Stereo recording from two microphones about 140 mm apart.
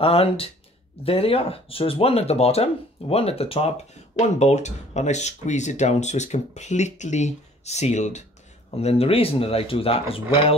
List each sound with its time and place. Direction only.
0.0 s speech: 45° left (ahead or behind)